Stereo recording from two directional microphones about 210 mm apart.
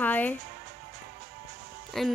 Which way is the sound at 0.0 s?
10° left (ahead or behind).